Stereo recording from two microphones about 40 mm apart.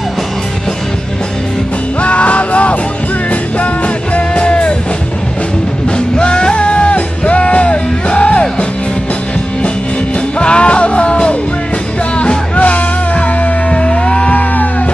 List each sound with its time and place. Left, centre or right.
2.0 s music: left
5.9 s music: left
10.4 s music: left
12.5 s music: left